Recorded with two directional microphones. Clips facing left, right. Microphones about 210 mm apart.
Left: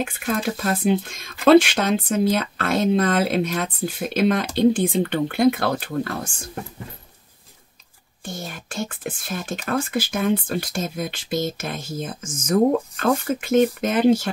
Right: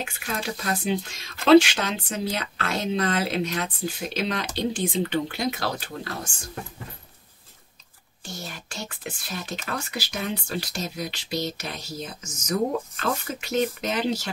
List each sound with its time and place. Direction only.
0.0 s speech: 50° left (ahead or behind)
8.3 s whispering: 50° left (ahead or behind)
9.7 s speech: 50° left (ahead or behind)